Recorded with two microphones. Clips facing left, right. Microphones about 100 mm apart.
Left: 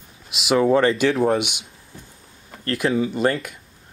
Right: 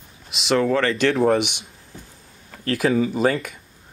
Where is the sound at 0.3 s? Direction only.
5° left (ahead or behind).